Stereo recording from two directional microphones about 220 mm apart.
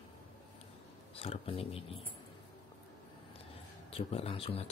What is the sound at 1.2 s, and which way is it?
Speech, 25° left (ahead or behind).